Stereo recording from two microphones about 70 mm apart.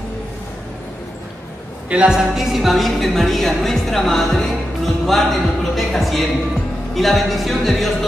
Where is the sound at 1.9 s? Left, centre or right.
Centre.